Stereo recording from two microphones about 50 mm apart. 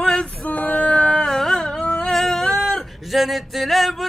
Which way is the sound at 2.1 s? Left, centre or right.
Centre.